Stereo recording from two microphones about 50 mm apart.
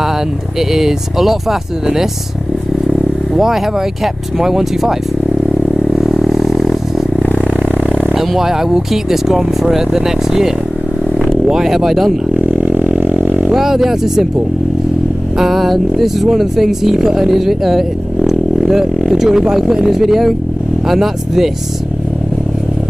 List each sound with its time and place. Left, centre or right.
0.6 s speech: centre
4.0 s speech: centre
5.9 s vehicle: centre
8.1 s speech: centre
12.5 s vehicle: right
13.5 s speech: centre
15.3 s speech: centre